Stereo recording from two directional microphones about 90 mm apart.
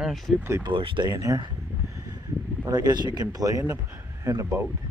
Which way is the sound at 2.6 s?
50° right (ahead or behind).